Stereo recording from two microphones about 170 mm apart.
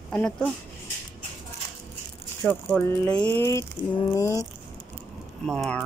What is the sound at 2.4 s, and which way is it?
Speech, 10° left (ahead or behind).